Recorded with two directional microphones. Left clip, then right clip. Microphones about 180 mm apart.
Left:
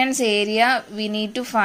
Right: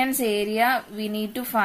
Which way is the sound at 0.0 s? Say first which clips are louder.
Left 4 dB; 15° left (ahead or behind).